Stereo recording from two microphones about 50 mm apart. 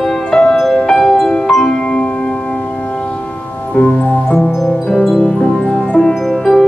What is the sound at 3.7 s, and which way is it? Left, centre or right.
Music, left.